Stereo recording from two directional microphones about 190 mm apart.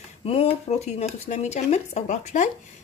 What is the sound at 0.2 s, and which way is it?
A woman's voice, 30° left (ahead or behind).